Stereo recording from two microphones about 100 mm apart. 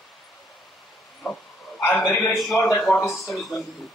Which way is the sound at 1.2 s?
15° left (ahead or behind).